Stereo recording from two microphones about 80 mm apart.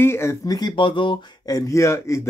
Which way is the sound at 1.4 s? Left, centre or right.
Left.